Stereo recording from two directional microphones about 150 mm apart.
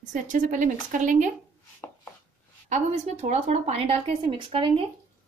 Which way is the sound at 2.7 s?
50° right (ahead or behind).